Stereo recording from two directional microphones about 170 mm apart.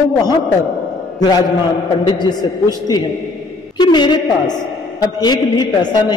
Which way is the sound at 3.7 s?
25° left (ahead or behind).